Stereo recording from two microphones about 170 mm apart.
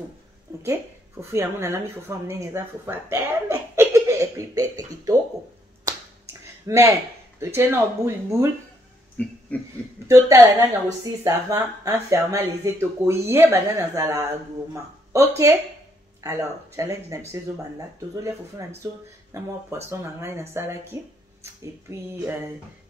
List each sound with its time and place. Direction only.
1.3 s speech: 15° right (ahead or behind)
5.9 s finger snapping: 20° right (ahead or behind)
9.2 s a sound: 10° left (ahead or behind)
10.0 s speech: 15° right (ahead or behind)